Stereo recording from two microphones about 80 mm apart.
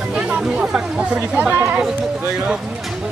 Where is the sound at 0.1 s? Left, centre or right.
Centre.